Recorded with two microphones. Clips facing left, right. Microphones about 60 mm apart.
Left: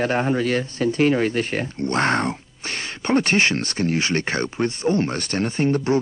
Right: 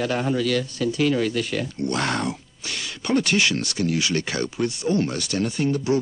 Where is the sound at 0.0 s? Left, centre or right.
Left.